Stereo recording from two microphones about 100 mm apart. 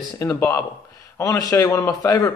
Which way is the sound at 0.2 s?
25° left (ahead or behind).